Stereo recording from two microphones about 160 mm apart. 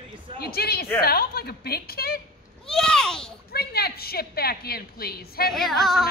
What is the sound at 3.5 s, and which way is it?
A woman's voice, 80° left.